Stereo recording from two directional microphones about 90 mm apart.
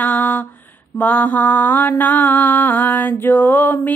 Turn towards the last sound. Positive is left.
turn(degrees=20)  # may be behind; listen again after turning